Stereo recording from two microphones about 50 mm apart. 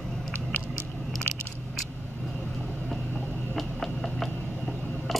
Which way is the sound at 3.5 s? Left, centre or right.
Centre.